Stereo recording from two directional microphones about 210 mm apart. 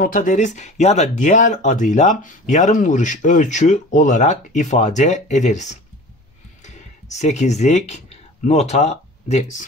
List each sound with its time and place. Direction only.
0.0 s speech: 40° left (ahead or behind)